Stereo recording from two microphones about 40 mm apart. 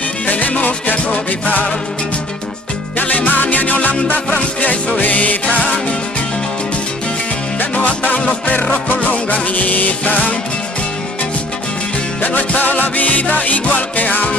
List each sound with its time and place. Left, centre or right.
0.3 s music: left
3.0 s music: left
7.7 s music: left
12.3 s music: left